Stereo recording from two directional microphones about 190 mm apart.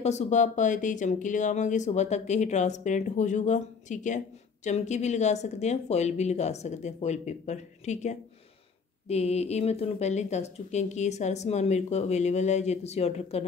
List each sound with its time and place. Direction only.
0.0 s speech: 35° left (ahead or behind)